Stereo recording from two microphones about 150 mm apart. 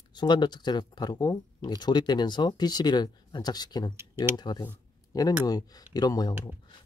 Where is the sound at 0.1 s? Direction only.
30° left (ahead or behind).